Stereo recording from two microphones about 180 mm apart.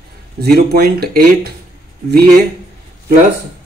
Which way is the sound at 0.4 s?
60° right (ahead or behind).